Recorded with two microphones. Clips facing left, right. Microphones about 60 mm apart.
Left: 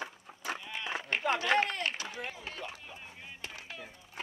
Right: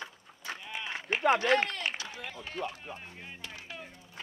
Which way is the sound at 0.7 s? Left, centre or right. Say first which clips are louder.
Even; centre.